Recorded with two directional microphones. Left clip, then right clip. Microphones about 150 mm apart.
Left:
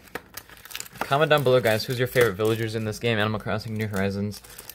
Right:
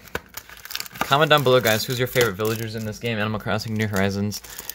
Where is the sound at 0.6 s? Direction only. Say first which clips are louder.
Right 5 dB; 30° right (ahead or behind).